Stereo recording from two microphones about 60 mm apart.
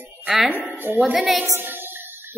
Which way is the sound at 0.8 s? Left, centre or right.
Right.